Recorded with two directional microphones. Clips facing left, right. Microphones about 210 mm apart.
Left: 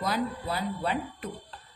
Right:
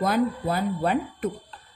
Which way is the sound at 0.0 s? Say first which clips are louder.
Right 7 dB; 50° right (ahead or behind).